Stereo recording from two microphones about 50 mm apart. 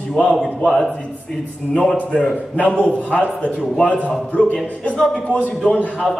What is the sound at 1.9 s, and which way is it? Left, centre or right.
A man's voice, left.